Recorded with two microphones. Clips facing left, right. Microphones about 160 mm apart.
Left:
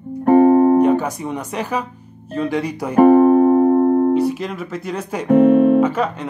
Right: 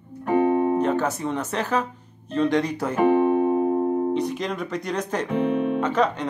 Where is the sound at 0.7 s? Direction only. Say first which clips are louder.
Left 7 dB; 10° left (ahead or behind).